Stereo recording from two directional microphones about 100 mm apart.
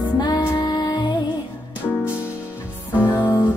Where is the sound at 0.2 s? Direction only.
45° left (ahead or behind).